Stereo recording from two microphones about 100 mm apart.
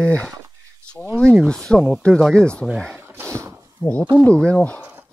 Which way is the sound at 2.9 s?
20° right (ahead or behind).